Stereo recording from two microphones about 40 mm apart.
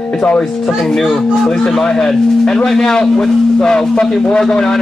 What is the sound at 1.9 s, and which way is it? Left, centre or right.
Speech, centre.